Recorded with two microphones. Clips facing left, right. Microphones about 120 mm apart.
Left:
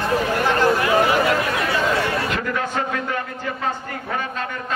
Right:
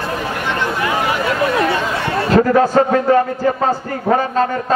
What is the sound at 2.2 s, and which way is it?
A man's voice, 35° right (ahead or behind).